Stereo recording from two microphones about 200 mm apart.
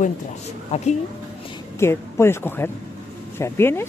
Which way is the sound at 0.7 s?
35° left (ahead or behind).